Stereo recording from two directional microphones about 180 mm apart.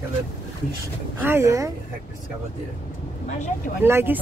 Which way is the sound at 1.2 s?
15° right (ahead or behind).